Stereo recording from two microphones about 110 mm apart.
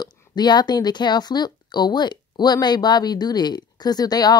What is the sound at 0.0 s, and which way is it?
Speech, 40° left (ahead or behind).